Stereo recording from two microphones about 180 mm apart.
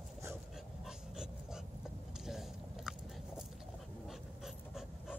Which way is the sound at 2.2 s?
Centre (ahead or behind).